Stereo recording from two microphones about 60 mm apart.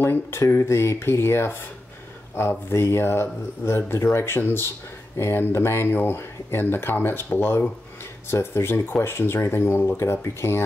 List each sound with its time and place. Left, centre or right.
0.0 s speech: left